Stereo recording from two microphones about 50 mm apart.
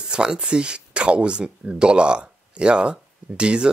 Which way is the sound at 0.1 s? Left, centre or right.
Centre.